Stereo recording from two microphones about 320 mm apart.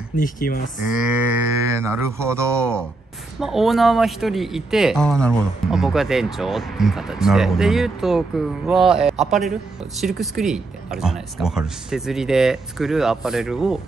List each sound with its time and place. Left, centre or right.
0.1 s speech: left
0.8 s speech: centre